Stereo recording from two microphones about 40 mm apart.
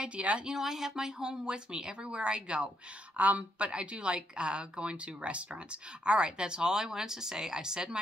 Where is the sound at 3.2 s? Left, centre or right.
Right.